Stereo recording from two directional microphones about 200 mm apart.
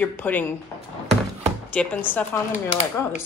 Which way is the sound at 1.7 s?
5° left (ahead or behind).